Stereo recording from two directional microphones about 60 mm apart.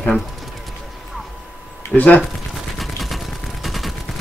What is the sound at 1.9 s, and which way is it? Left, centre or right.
Speech, left.